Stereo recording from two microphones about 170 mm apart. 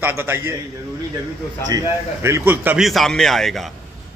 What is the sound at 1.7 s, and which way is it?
A man's voice, 15° right (ahead or behind).